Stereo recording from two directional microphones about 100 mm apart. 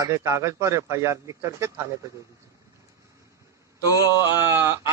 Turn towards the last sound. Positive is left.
turn(degrees=-25)  # may be behind; listen again after turning